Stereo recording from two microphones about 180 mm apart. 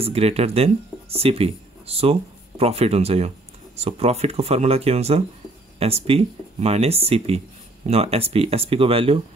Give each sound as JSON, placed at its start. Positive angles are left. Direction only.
{"t": 0.0, "sound": "speech", "side_deg": -35}